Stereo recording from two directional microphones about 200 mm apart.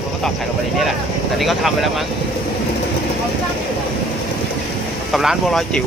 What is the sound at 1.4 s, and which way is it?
Speech, centre (ahead or behind).